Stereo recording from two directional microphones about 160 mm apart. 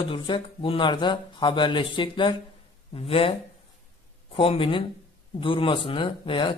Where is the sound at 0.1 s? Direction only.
35° left (ahead or behind).